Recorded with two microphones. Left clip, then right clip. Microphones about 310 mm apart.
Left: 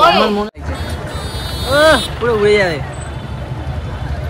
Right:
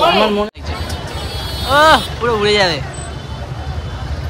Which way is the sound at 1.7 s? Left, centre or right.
Centre.